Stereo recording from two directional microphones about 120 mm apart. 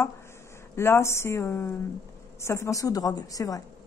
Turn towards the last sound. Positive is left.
turn(degrees=30)  # may be behind; listen again after turning